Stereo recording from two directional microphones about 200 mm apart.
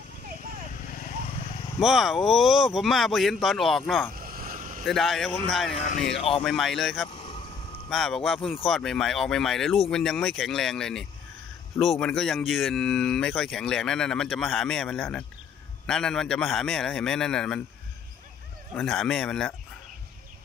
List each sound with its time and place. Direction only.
1.8 s speech: centre (ahead or behind)
4.1 s vehicle: 45° right (ahead or behind)
4.8 s speech: centre (ahead or behind)
5.7 s speech: 35° left (ahead or behind)
6.4 s speech: centre (ahead or behind)
7.1 s vehicle: 25° left (ahead or behind)
7.9 s speech: centre (ahead or behind)
18.8 s speech: centre (ahead or behind)